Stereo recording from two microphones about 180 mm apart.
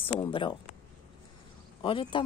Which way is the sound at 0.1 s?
25° left (ahead or behind).